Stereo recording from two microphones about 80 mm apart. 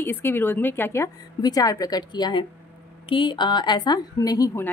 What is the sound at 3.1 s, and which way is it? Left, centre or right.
Speech, left.